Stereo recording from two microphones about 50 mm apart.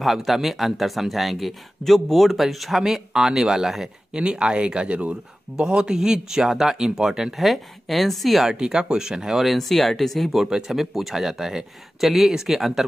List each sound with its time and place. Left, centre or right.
0.0 s speech: centre
4.1 s speech: centre
8.5 s speech: centre